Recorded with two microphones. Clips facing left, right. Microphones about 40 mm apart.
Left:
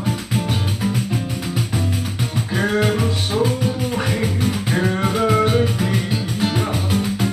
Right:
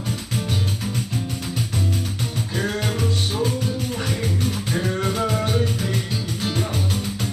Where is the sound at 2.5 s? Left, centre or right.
Left.